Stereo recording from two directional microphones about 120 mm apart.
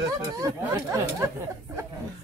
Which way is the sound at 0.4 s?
25° right (ahead or behind).